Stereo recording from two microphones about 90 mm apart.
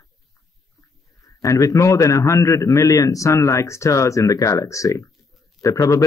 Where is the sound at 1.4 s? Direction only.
40° left (ahead or behind).